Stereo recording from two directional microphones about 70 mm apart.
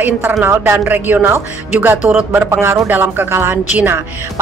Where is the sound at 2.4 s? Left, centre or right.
Right.